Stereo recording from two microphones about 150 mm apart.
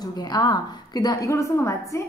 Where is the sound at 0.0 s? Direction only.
25° left (ahead or behind).